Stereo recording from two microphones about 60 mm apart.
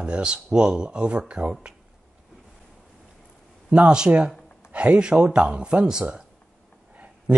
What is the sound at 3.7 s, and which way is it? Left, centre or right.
Speech, centre.